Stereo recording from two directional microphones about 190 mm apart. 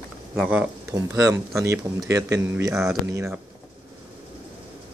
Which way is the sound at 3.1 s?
15° right (ahead or behind).